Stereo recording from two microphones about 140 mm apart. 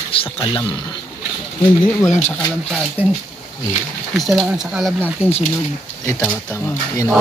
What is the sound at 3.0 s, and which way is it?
Speech, 45° left (ahead or behind).